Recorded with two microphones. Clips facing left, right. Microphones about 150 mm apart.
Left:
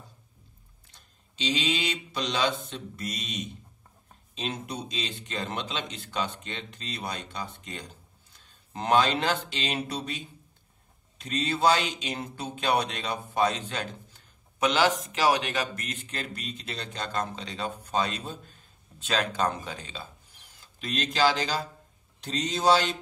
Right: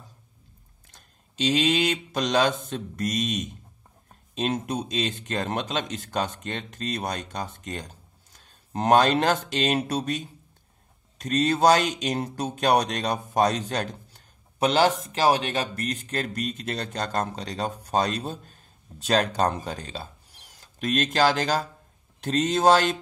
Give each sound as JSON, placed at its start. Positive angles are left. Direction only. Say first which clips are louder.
{"t": 0.9, "sound": "speech", "louder": "right 8 dB", "side_deg": -50}